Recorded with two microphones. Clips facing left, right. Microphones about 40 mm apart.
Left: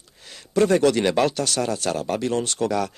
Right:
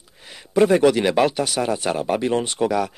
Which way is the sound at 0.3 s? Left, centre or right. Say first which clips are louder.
Right 2 dB; centre.